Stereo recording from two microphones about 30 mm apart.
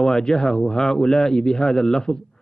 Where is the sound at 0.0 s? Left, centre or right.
Centre.